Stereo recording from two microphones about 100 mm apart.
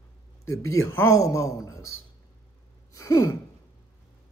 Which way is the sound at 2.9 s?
35° left (ahead or behind).